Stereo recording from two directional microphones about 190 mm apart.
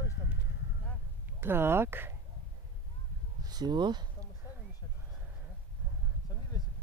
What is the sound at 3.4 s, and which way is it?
Speech, 20° right (ahead or behind).